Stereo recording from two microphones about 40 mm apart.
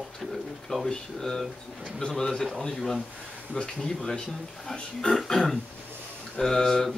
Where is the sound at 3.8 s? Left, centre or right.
Centre.